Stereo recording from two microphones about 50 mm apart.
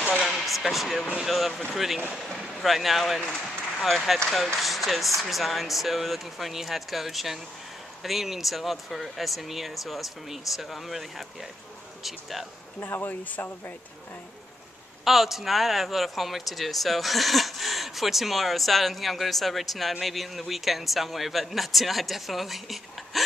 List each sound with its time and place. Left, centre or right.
0.2 s a sound: centre
0.5 s speech: centre
12.8 s speech: left
15.0 s speech: centre